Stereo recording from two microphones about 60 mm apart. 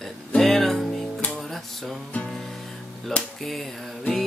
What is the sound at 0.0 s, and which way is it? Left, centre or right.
Music, centre.